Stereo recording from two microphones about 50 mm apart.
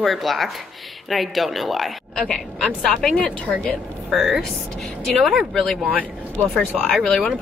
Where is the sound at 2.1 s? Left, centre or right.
Centre.